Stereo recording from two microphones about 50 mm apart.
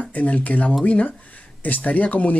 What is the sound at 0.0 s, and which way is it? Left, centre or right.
Speech, left.